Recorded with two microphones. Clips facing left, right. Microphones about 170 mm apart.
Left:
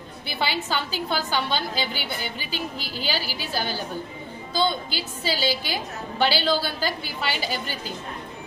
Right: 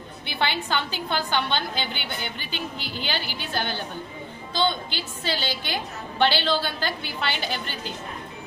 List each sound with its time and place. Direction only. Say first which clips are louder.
0.3 s a woman's voice: even; 5° left (ahead or behind)
2.5 s a woman's voice: left 1 dB; 40° left (ahead or behind)
3.1 s a woman's voice: left 3 dB; 5° left (ahead or behind)